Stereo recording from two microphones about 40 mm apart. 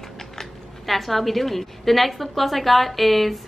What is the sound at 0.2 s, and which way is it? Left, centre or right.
A woman's voice, centre.